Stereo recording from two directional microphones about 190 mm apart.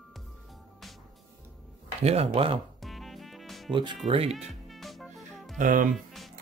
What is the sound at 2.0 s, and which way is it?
Speech, 35° right (ahead or behind).